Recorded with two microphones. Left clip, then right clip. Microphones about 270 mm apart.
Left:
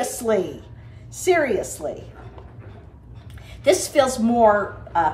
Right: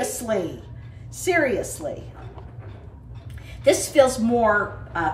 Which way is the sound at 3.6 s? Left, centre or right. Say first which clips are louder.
Right 1 dB; centre.